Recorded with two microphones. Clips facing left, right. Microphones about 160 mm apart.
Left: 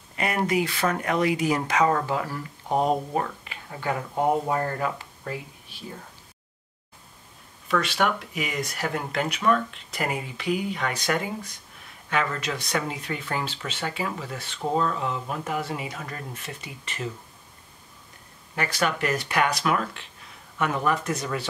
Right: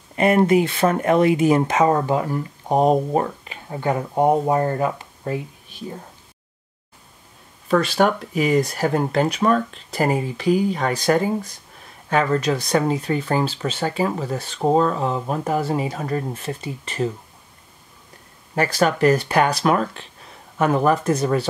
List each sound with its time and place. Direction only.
0.1 s speech: 25° right (ahead or behind)
7.6 s speech: 35° right (ahead or behind)
18.5 s speech: 40° right (ahead or behind)